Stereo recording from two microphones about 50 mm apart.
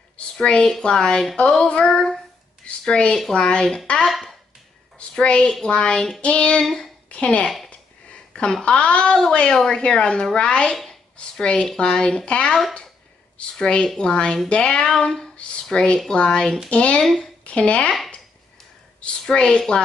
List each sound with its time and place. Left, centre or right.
0.4 s speech: centre
4.0 s speech: centre
4.9 s a woman's voice: centre
6.6 s speech: centre
7.1 s speech: left
13.6 s a woman's voice: centre
17.0 s speech: centre
17.5 s speech: left
19.2 s speech: centre